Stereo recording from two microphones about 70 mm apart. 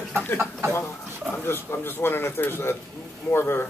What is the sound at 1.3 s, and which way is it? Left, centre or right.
Speech, left.